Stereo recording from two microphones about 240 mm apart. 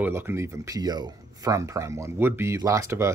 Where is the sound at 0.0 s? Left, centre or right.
Centre.